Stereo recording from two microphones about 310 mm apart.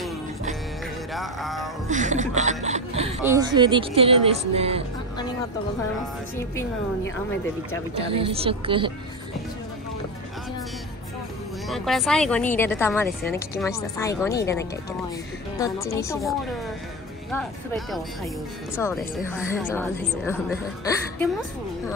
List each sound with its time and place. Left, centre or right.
1.1 s speech: centre
1.9 s speech: right
8.1 s speech: centre
11.6 s a woman's voice: centre